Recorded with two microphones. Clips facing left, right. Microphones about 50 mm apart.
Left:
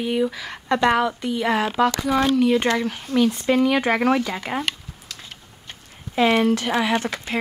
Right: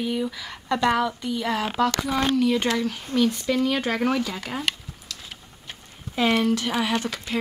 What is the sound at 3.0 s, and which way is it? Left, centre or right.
Speech, left.